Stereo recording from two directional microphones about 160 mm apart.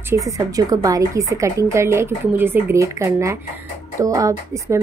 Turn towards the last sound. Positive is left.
turn(degrees=-20)  # may be behind; listen again after turning